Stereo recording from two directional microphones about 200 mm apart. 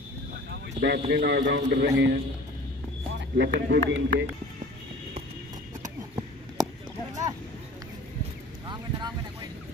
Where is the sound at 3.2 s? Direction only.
60° right (ahead or behind).